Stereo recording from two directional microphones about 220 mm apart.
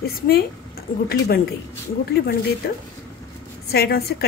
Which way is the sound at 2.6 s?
45° left (ahead or behind).